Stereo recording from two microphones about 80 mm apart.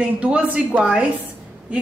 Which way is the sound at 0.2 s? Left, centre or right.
Centre.